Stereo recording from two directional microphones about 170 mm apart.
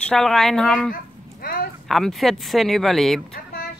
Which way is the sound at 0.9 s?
55° left (ahead or behind).